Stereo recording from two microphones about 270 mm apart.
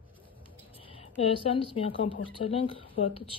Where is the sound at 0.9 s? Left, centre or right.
Left.